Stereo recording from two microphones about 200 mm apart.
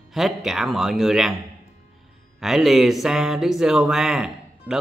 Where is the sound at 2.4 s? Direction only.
Centre (ahead or behind).